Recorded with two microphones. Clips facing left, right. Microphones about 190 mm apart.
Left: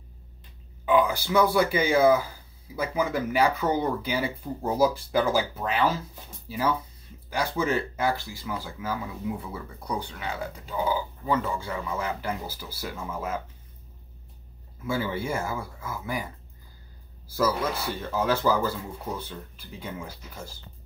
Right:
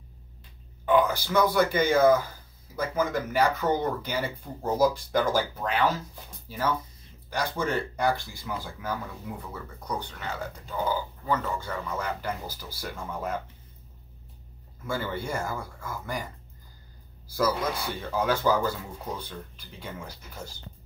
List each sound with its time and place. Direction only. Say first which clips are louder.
0.8 s speech: even; 10° left (ahead or behind)
7.2 s speech: left 2 dB; 5° left (ahead or behind)
14.9 s speech: left 3 dB; 5° left (ahead or behind)
18.1 s speech: even; 5° left (ahead or behind)